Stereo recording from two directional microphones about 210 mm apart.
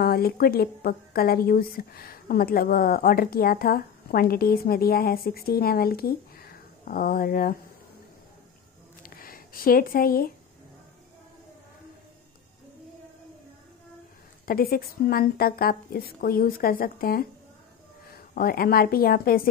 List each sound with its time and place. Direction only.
0.0 s a woman's voice: 45° left (ahead or behind)
9.0 s a sound: 45° left (ahead or behind)
14.4 s a woman's voice: 45° left (ahead or behind)